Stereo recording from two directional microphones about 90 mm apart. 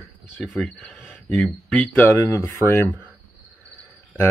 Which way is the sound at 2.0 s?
35° left (ahead or behind).